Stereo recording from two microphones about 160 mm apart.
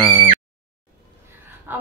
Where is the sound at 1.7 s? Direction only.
10° right (ahead or behind).